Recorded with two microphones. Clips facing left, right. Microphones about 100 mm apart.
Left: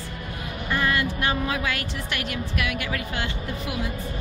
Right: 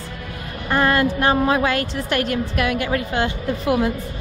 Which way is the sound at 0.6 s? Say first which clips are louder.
Right 7 dB; 45° right (ahead or behind).